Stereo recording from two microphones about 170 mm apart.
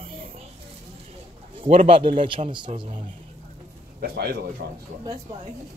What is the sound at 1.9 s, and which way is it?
Speech, 35° right (ahead or behind).